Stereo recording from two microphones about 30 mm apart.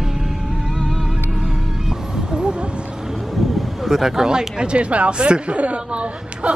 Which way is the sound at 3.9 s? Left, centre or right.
Centre.